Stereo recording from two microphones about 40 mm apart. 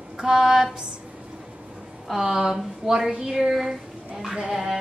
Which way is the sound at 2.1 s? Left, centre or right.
Centre.